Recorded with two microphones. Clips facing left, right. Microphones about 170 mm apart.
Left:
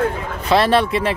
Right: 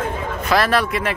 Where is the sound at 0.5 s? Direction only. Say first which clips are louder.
Left 3 dB; 25° left (ahead or behind).